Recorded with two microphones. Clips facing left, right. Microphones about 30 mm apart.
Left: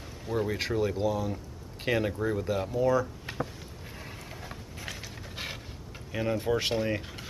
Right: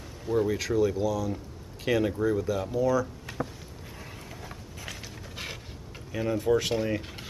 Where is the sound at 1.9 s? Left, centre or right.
Centre.